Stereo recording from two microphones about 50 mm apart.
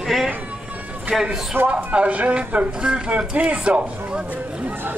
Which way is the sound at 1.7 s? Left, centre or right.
Right.